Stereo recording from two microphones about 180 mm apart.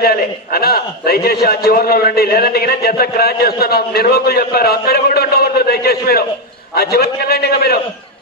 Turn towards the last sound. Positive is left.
turn(degrees=60)  # may be behind; listen again after turning